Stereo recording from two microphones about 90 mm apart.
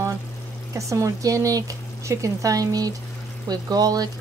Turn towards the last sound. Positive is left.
turn(degrees=-45)  # may be behind; listen again after turning